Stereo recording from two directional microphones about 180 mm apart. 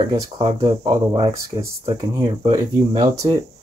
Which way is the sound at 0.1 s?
25° right (ahead or behind).